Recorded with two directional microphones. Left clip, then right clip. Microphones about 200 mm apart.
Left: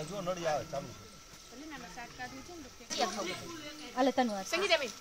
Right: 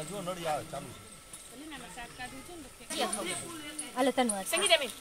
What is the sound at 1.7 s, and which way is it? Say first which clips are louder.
Speech: right 1 dB; 10° left (ahead or behind).